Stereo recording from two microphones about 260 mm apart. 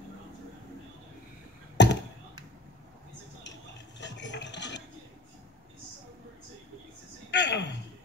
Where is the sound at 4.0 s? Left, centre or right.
Left.